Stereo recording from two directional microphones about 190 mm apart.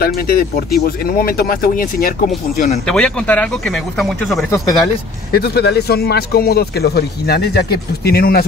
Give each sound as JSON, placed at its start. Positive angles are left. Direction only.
{"t": 0.0, "sound": "speech", "side_deg": 50}
{"t": 2.9, "sound": "speech", "side_deg": 5}
{"t": 5.3, "sound": "speech", "side_deg": 55}